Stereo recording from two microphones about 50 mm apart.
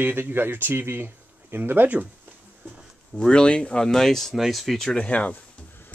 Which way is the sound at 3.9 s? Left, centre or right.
Centre.